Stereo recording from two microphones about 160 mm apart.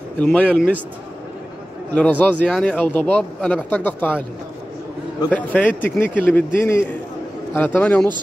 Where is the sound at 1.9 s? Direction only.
10° left (ahead or behind).